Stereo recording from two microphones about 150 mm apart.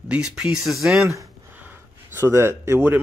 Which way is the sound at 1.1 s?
15° right (ahead or behind).